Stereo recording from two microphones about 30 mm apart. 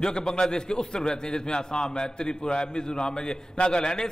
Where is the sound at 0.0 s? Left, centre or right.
Left.